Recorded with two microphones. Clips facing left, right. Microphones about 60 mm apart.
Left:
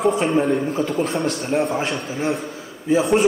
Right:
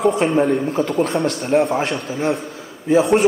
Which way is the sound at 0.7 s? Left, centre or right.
Right.